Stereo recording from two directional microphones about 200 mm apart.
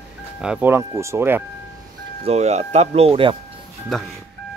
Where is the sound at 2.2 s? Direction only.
30° right (ahead or behind).